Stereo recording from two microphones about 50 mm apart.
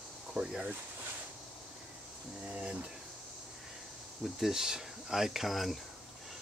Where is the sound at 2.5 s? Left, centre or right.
Right.